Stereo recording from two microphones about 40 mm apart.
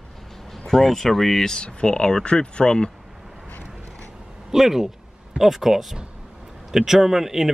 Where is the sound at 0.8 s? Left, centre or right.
Centre; by 2.9 s left.